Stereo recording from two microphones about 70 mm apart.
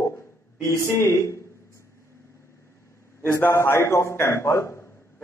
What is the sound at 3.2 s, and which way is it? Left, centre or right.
A man's voice, left.